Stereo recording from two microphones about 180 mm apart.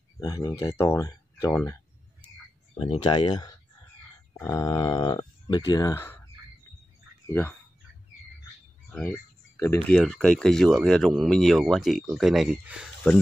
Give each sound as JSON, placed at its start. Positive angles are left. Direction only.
{"t": 0.2, "sound": "speech", "side_deg": 20}
{"t": 2.8, "sound": "speech", "side_deg": 30}
{"t": 8.9, "sound": "a sound", "side_deg": 10}
{"t": 9.8, "sound": "speech", "side_deg": 5}